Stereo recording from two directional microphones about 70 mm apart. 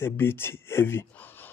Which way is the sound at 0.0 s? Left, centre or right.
Left.